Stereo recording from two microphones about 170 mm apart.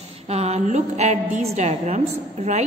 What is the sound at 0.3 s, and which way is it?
A woman's voice, 40° right (ahead or behind).